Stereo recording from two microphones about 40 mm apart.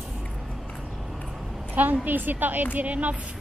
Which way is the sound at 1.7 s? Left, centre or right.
Right.